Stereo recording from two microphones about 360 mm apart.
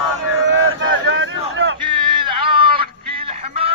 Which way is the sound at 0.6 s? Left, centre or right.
Right.